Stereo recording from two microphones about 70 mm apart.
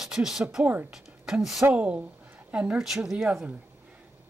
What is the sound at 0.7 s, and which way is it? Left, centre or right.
Speech, right.